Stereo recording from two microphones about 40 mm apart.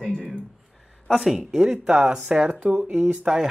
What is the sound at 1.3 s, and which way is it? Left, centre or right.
Speech, centre.